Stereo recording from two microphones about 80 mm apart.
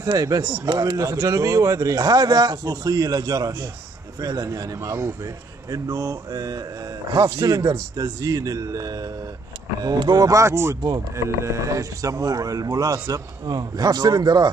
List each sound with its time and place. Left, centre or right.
0.2 s speech: right
9.9 s speech: right
10.2 s speech: right